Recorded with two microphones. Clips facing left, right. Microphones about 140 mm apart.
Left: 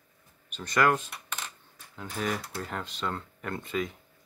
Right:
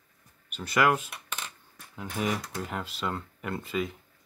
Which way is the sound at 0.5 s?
10° right (ahead or behind).